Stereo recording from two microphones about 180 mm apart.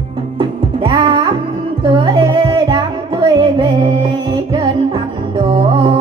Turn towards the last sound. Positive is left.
turn(degrees=-25)  # may be behind; listen again after turning